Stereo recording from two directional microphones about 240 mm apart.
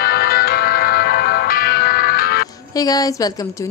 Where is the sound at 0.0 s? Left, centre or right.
Left.